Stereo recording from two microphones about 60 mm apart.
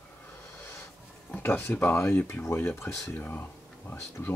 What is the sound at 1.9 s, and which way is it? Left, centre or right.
Speech, left.